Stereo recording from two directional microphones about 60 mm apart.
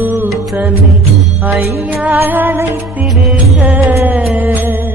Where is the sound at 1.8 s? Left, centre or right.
Right.